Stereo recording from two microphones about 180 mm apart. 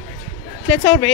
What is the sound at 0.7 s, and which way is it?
Speech, 10° left (ahead or behind).